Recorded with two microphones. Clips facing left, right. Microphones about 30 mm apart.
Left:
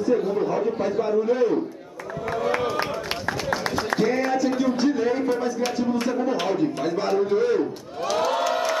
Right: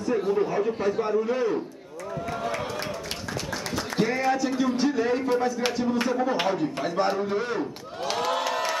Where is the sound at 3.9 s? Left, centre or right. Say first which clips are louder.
Left 2 dB; centre.